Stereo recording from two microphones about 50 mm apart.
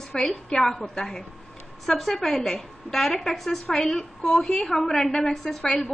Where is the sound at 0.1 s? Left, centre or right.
Centre.